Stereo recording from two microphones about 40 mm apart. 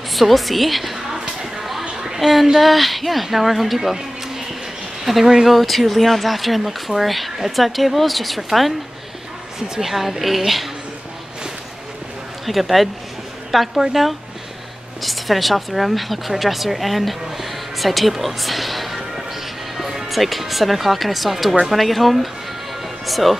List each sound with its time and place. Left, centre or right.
0.1 s speech: centre
0.9 s a sound: centre
1.6 s a sound: centre
2.1 s a woman's voice: centre
5.6 s speech: centre
9.8 s speech: centre
12.4 s speech: centre